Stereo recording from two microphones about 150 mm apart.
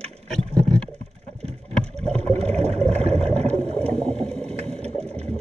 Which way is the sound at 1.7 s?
5° left (ahead or behind).